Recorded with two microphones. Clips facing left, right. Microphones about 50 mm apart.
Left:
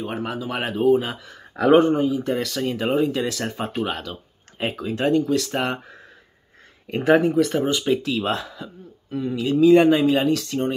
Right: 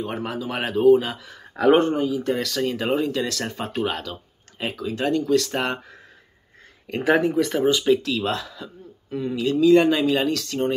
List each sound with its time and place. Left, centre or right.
0.0 s speech: centre
1.3 s speech: centre
2.0 s speech: left
2.2 s speech: centre
3.1 s speech: centre
4.6 s speech: left
5.3 s speech: centre
7.1 s speech: centre
7.9 s speech: centre
9.1 s speech: centre
9.6 s speech: left